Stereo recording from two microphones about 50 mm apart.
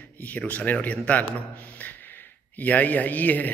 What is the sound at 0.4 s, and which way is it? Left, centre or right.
Speech, left.